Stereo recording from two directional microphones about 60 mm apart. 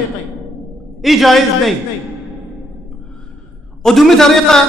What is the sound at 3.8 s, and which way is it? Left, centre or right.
Speech, centre.